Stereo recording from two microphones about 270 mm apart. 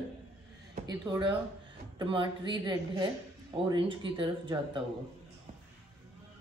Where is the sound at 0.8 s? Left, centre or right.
Centre.